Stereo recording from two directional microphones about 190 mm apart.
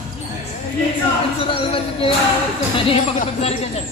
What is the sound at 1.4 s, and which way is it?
A man's voice, 30° left (ahead or behind).